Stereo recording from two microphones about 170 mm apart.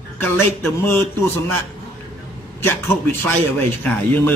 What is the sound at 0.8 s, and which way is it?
Speech, 15° left (ahead or behind).